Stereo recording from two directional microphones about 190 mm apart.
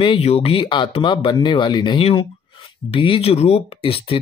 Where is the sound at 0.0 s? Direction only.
30° left (ahead or behind).